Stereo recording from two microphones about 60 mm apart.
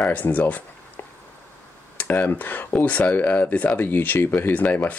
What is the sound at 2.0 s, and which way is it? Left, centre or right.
Speech, left.